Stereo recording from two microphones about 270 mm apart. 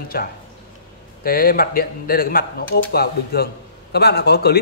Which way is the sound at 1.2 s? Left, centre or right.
Left.